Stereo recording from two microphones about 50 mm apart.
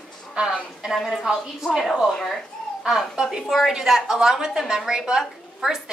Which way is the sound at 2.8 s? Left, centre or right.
Centre.